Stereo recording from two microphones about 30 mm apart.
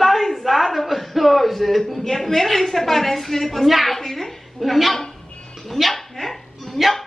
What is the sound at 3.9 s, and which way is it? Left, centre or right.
A woman's voice, centre.